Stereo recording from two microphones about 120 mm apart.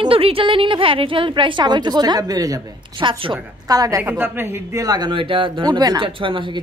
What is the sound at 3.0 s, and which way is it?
A woman's voice, 45° right (ahead or behind).